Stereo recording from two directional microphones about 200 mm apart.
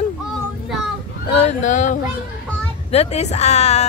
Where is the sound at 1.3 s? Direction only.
35° left (ahead or behind).